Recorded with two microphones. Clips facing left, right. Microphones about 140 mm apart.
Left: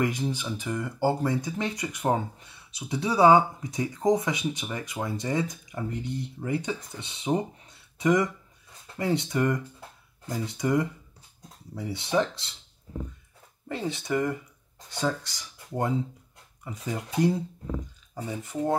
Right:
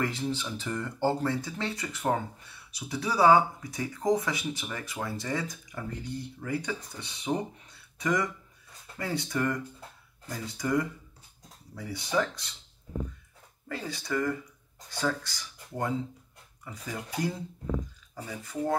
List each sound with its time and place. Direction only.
0.0 s speech: 15° left (ahead or behind)
13.7 s speech: 25° left (ahead or behind)